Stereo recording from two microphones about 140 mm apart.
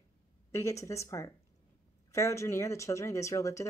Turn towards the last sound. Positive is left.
turn(degrees=20)  # may be behind; listen again after turning